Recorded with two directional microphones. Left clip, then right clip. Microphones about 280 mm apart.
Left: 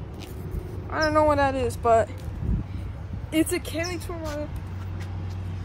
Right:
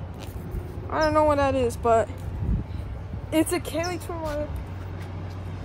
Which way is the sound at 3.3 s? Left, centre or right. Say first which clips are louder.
Right 1 dB; centre.